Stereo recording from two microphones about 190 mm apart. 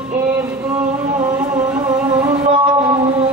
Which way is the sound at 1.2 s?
15° right (ahead or behind).